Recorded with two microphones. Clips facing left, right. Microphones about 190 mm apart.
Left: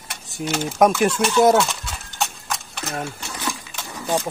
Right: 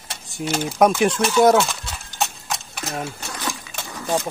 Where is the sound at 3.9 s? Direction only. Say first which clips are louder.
Even; 5° left (ahead or behind).